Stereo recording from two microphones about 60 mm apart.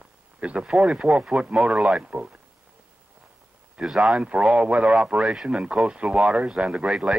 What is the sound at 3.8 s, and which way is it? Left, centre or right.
Speech, centre.